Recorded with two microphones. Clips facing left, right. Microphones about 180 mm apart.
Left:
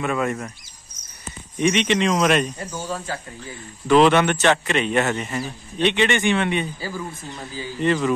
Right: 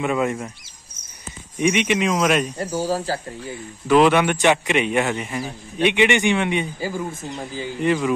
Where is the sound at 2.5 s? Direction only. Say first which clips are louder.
Right 6 dB; 40° right (ahead or behind).